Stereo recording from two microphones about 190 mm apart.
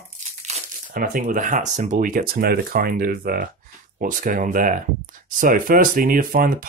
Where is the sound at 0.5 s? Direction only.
45° right (ahead or behind).